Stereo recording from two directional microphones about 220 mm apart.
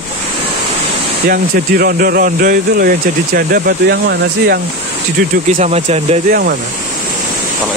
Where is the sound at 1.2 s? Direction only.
45° right (ahead or behind).